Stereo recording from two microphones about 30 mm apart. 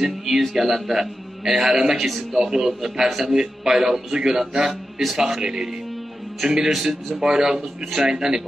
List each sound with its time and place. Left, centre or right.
0.0 s a man's voice: centre
6.7 s speech: centre
7.2 s speech: right